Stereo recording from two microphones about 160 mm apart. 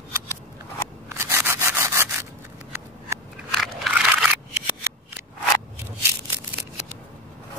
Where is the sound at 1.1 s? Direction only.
15° right (ahead or behind).